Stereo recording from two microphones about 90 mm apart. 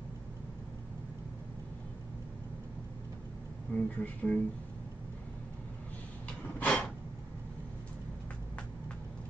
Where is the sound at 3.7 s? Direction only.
15° left (ahead or behind).